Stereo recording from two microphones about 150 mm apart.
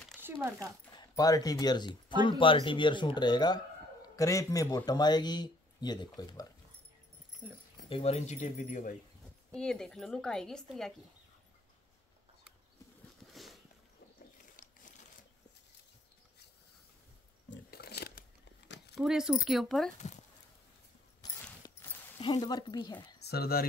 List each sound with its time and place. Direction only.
0.2 s speech: 20° right (ahead or behind)
0.9 s a man's voice: 25° left (ahead or behind)
7.9 s speech: 45° left (ahead or behind)
9.5 s a woman's voice: 5° left (ahead or behind)
13.3 s a sound: centre (ahead or behind)
17.6 s a sound: 90° left
18.9 s a woman's voice: 5° right (ahead or behind)
21.2 s mechanisms: 25° left (ahead or behind)
21.6 s a sound: 30° left (ahead or behind)
22.2 s a man's voice: 25° left (ahead or behind)
23.2 s speech: 90° left